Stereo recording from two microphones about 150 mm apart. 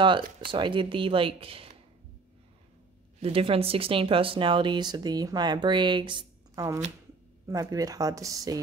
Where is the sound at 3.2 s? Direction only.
40° right (ahead or behind).